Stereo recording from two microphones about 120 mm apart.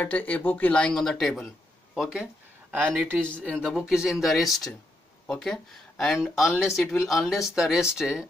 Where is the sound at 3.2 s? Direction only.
10° left (ahead or behind).